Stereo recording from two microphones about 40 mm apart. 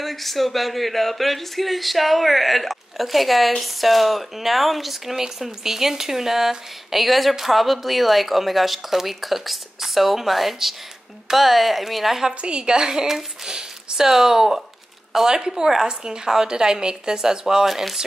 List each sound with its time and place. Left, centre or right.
0.0 s speech: centre
12.4 s a woman's voice: right